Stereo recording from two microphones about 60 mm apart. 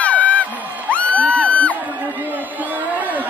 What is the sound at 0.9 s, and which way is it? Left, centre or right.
Music, left.